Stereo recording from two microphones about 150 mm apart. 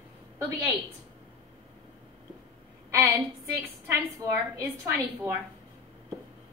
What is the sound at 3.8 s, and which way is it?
Speech, 15° right (ahead or behind).